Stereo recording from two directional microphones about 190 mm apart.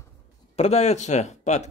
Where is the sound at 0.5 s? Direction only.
35° left (ahead or behind).